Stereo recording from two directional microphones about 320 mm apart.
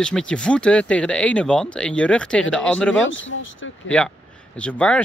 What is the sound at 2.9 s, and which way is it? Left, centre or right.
Speech, left.